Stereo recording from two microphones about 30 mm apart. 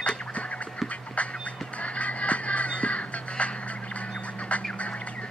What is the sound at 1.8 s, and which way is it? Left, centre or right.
Music, left.